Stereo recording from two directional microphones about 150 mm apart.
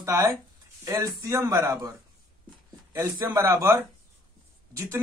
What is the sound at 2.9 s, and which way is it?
Speech, 20° right (ahead or behind).